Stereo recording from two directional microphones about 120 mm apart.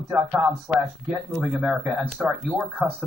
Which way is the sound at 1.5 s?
5° right (ahead or behind).